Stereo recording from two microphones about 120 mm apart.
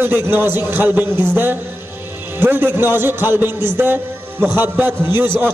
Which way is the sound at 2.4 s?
20° right (ahead or behind).